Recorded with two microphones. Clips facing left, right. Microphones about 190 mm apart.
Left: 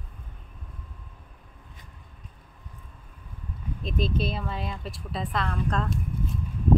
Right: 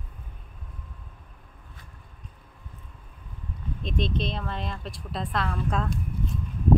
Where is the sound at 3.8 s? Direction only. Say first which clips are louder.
Left 1 dB; 5° left (ahead or behind).